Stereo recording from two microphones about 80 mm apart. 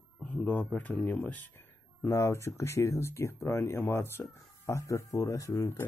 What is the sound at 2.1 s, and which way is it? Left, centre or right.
Speech, left.